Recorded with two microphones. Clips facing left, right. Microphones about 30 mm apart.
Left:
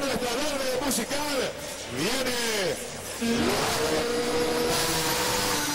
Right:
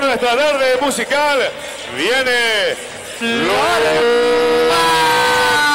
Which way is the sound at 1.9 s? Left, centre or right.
Right.